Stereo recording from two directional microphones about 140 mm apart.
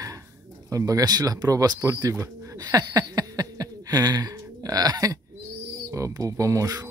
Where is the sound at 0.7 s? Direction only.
25° right (ahead or behind).